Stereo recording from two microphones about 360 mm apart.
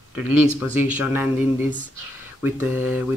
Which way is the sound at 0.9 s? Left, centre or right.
Centre.